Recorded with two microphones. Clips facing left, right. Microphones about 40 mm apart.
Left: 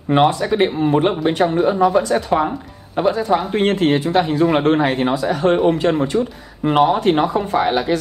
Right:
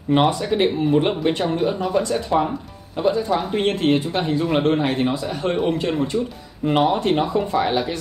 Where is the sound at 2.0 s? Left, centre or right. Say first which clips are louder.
Left 5 dB; left.